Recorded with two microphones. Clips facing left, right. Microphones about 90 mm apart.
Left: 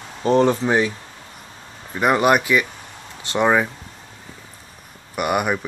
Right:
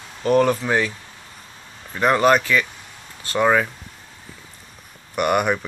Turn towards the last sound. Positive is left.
turn(degrees=5)  # may be behind; listen again after turning